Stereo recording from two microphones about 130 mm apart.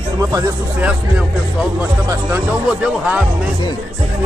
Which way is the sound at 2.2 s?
10° right (ahead or behind).